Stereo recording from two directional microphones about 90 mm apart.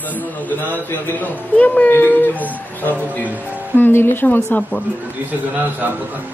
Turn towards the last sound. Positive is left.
turn(degrees=-20)  # may be behind; listen again after turning